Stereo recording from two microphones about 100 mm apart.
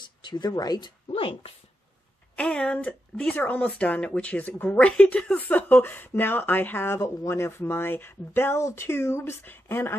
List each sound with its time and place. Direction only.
0.0 s speech: 50° left (ahead or behind)
2.3 s speech: 10° left (ahead or behind)